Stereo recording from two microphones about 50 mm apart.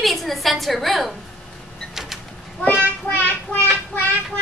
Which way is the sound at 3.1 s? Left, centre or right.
Left.